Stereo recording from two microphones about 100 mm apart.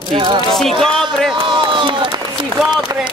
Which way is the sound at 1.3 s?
55° right (ahead or behind).